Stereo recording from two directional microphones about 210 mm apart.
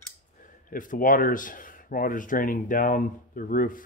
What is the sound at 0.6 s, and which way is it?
Speech, 40° left (ahead or behind).